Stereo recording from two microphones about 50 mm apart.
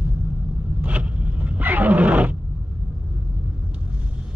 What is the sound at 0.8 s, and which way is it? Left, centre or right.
Zipper, right.